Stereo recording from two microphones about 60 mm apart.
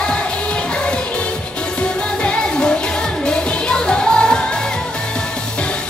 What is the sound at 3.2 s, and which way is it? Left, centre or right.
Music of asia, centre.